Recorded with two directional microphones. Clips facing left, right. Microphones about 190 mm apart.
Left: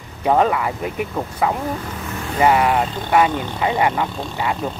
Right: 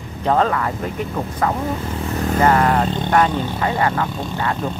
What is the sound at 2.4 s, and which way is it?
Speech, 10° left (ahead or behind).